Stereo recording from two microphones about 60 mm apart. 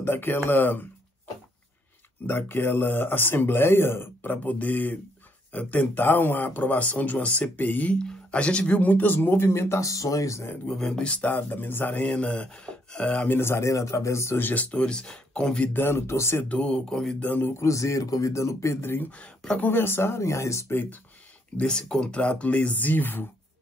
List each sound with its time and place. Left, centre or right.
0.0 s speech: left
2.2 s speech: left
7.9 s speech: centre; by 9.8 s left
9.8 s speech: left
10.7 s speech: centre
13.3 s speech: left
14.4 s speech: left
15.7 s speech: left
16.4 s speech: left
17.2 s speech: left
17.6 s speech: left
20.7 s speech: left
21.5 s speech: centre; by 23.2 s left